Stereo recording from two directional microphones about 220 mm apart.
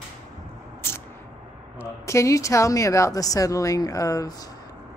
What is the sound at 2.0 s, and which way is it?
A woman's voice, 15° left (ahead or behind).